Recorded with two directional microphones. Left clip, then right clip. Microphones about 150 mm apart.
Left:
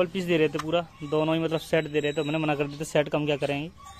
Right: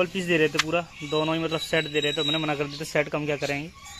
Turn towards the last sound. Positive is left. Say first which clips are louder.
# left 1 dB
turn(degrees=25)  # may be behind; listen again after turning